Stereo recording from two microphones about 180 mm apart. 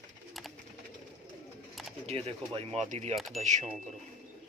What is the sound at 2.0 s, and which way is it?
Speech, 35° right (ahead or behind).